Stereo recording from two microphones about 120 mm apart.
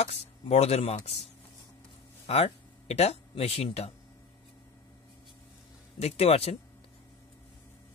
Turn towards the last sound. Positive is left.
turn(degrees=60)  # may be behind; listen again after turning